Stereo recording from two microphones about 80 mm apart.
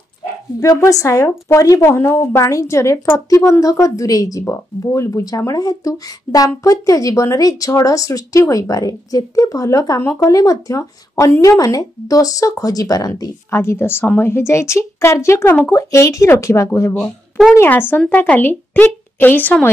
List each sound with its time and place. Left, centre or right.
0.6 s a woman's voice: left
13.5 s a woman's voice: left
17.6 s a woman's voice: left